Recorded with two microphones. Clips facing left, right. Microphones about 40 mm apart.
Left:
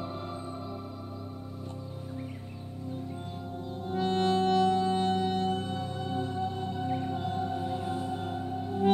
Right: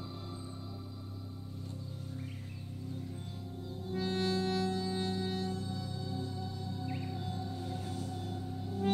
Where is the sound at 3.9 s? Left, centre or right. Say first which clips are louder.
Left 7 dB; left.